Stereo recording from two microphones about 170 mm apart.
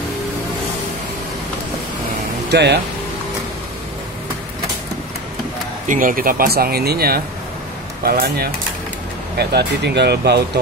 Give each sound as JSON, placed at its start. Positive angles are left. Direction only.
{"t": 2.5, "sound": "speech", "side_deg": -80}
{"t": 5.9, "sound": "speech", "side_deg": -55}
{"t": 9.4, "sound": "speech", "side_deg": -75}